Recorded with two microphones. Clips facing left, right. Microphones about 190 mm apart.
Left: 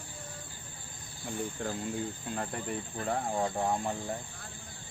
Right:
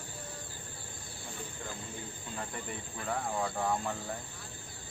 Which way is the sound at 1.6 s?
75° left (ahead or behind).